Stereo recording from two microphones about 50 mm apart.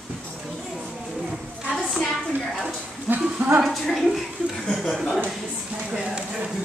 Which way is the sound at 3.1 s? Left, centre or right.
Right.